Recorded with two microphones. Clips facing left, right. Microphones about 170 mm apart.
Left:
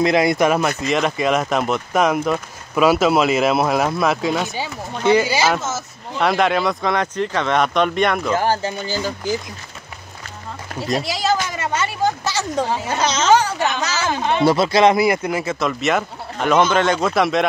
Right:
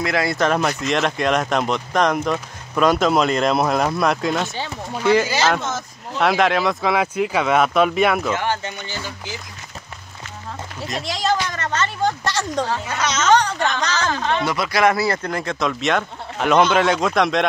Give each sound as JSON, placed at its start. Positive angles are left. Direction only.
{"t": 0.0, "sound": "speech", "side_deg": 20}
{"t": 5.2, "sound": "speech", "side_deg": 10}
{"t": 8.4, "sound": "speech", "side_deg": 35}
{"t": 11.0, "sound": "speech", "side_deg": 5}
{"t": 12.8, "sound": "speech", "side_deg": 30}
{"t": 13.3, "sound": "a woman's voice", "side_deg": 5}
{"t": 14.4, "sound": "speech", "side_deg": 30}